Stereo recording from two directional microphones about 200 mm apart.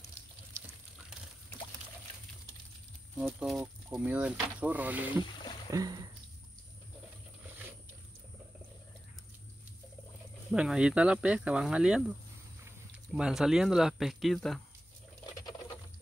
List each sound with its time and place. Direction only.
3.2 s speech: 5° right (ahead or behind)
5.1 s speech: 25° left (ahead or behind)
5.7 s speech: 20° right (ahead or behind)
10.5 s speech: 5° right (ahead or behind)
13.1 s speech: centre (ahead or behind)